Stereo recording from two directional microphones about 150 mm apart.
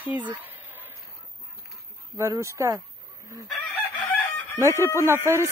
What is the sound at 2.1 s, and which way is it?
Speech, 20° right (ahead or behind).